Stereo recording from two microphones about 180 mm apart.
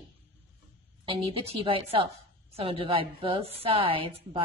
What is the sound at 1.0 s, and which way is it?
A woman's voice, 30° right (ahead or behind).